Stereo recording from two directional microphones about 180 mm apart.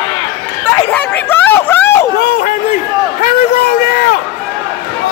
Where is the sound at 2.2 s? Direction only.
60° left (ahead or behind).